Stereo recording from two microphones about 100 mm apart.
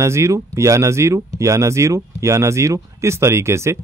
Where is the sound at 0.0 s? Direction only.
30° right (ahead or behind).